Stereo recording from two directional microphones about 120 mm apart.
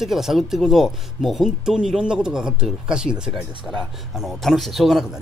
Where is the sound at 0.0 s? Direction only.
5° right (ahead or behind).